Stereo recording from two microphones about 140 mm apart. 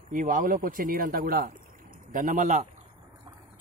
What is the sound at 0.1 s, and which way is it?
Speech, 75° right (ahead or behind).